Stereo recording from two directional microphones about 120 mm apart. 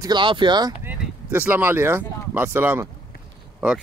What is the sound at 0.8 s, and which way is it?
Speech, 15° right (ahead or behind).